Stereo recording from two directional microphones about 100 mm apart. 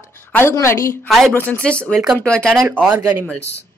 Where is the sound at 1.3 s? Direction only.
15° left (ahead or behind).